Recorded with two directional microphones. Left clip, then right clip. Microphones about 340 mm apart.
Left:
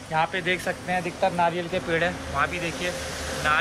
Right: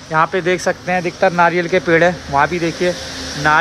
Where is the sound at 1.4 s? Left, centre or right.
Right.